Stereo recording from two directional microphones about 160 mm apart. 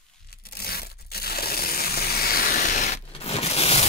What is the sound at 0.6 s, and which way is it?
Crushing, 75° left (ahead or behind).